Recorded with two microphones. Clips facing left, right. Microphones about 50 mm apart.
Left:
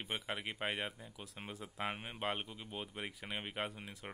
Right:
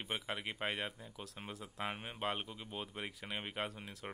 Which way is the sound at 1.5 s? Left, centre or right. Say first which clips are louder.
Even; centre.